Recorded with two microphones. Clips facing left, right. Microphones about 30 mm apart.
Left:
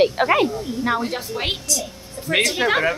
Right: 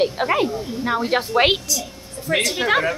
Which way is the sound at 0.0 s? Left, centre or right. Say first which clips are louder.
Left 2 dB; centre.